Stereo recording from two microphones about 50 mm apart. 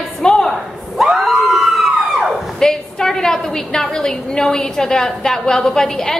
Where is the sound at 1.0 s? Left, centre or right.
Centre.